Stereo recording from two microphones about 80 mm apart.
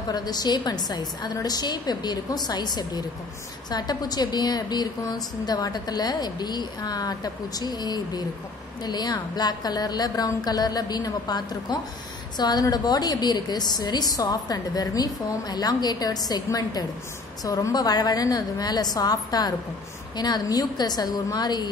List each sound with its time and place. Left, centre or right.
0.1 s a woman's voice: left